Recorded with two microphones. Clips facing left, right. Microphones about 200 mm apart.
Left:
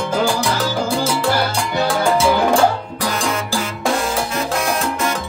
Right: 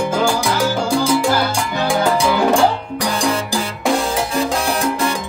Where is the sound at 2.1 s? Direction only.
15° right (ahead or behind).